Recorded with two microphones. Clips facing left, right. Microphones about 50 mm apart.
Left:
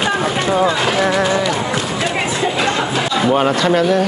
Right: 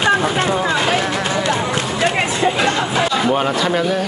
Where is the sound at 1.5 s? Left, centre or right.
Right.